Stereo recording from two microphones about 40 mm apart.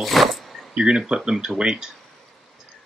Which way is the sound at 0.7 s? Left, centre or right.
Centre.